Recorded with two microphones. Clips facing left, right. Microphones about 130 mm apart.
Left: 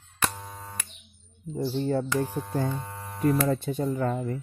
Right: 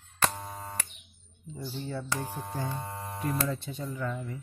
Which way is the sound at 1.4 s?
45° left (ahead or behind).